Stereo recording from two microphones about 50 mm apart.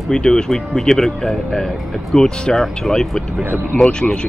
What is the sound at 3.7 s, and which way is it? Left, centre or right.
Speech, left.